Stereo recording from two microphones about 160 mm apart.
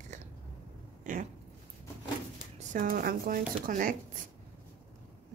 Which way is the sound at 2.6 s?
60° right (ahead or behind).